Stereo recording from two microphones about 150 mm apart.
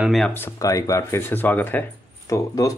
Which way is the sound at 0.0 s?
Centre (ahead or behind).